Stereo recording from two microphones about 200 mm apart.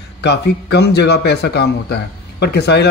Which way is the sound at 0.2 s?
55° left (ahead or behind).